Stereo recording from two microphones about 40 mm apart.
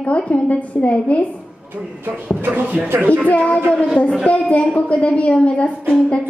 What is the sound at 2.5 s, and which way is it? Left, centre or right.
Speech, right.